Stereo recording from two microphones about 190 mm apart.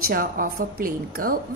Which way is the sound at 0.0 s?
50° right (ahead or behind).